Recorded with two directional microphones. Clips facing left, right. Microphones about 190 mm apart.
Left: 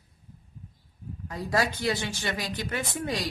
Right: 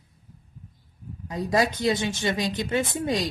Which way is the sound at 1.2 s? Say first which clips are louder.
Right 4 dB; 20° right (ahead or behind).